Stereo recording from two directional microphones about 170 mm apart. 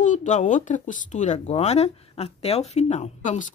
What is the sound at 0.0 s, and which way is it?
Speech, 45° left (ahead or behind).